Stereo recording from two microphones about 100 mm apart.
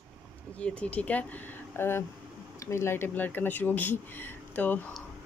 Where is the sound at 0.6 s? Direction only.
10° left (ahead or behind).